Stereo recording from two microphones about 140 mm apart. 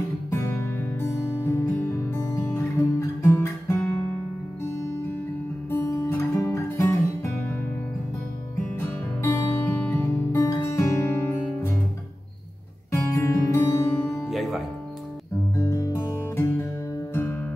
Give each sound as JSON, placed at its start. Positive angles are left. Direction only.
{"t": 0.3, "sound": "music", "side_deg": 15}
{"t": 5.7, "sound": "guitar", "side_deg": 20}
{"t": 9.2, "sound": "music", "side_deg": 20}
{"t": 12.9, "sound": "music", "side_deg": 20}
{"t": 14.3, "sound": "music", "side_deg": 0}
{"t": 15.5, "sound": "music", "side_deg": 20}